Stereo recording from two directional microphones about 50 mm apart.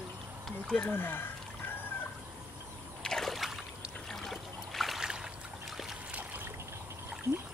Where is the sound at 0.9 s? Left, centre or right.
Left.